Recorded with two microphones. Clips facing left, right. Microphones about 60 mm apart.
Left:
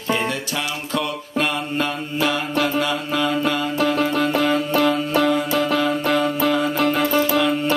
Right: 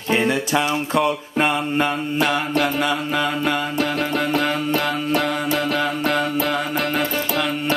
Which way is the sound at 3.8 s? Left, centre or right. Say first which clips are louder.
Left 7 dB; centre.